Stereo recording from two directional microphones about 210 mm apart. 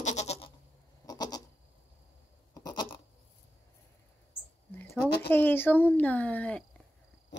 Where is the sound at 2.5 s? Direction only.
20° left (ahead or behind).